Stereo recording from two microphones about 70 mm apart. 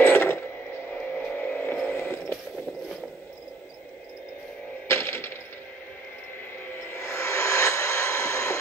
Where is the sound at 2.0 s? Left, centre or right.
Left.